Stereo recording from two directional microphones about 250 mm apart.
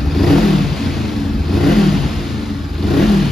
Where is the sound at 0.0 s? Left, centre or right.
Centre.